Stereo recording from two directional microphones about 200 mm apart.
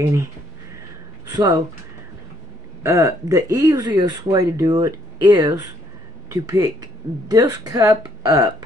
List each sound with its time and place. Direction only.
0.0 s speech: 15° right (ahead or behind)
1.3 s speech: 20° right (ahead or behind)
2.8 s speech: 15° right (ahead or behind)